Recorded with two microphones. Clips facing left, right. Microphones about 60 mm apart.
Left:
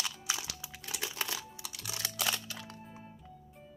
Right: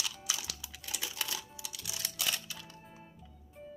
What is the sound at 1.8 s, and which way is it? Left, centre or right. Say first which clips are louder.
Music: left 3 dB; left.